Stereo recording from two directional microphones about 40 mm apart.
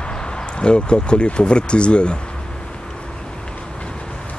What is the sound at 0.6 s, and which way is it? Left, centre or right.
Speech, left.